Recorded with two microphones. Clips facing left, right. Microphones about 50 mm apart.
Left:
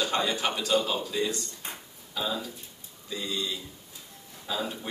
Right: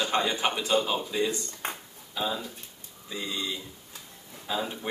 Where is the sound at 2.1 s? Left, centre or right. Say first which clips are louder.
Right 1 dB; centre.